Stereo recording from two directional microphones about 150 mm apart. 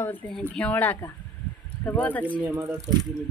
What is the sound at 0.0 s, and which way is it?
Speech, 15° left (ahead or behind).